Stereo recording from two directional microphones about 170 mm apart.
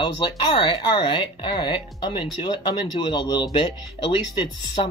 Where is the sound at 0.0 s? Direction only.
25° left (ahead or behind).